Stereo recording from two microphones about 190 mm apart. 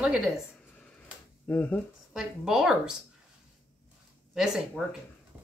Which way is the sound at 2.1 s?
5° right (ahead or behind).